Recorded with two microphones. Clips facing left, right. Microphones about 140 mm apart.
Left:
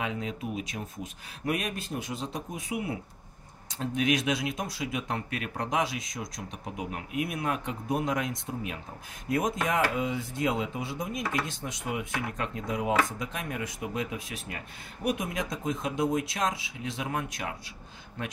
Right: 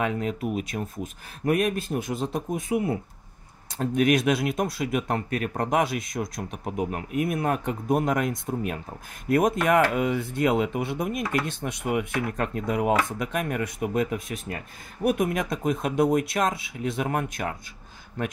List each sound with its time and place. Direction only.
0.0 s speech: 55° right (ahead or behind)